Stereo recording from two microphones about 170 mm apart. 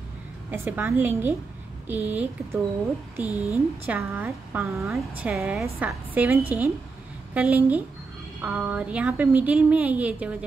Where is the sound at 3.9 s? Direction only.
15° right (ahead or behind).